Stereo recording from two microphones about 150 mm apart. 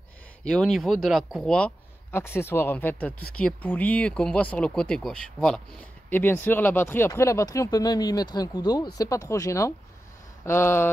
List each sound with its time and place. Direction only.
0.4 s speech: 5° left (ahead or behind)